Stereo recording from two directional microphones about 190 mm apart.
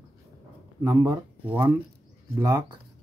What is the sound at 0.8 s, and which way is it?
Speech, 15° right (ahead or behind).